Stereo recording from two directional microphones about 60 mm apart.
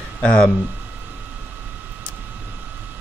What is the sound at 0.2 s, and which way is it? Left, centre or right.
Speech, centre.